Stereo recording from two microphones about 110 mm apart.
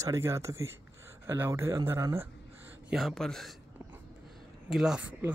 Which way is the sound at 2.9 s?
Centre (ahead or behind).